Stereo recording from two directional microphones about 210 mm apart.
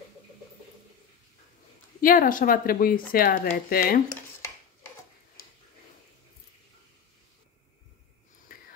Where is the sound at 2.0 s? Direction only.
40° left (ahead or behind).